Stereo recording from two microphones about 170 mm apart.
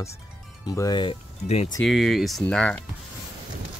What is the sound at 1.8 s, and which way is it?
Speech, centre (ahead or behind).